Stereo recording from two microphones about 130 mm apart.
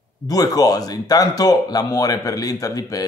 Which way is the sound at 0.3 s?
30° left (ahead or behind).